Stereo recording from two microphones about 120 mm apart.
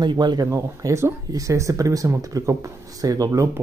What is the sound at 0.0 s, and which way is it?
Speech, 35° right (ahead or behind).